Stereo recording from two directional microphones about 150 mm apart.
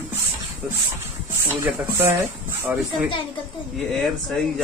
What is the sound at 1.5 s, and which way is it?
Speech, 15° right (ahead or behind).